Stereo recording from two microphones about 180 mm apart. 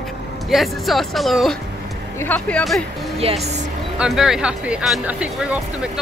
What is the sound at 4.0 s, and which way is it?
Speech, centre (ahead or behind).